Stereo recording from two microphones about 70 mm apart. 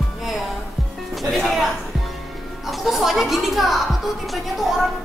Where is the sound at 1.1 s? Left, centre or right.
Centre.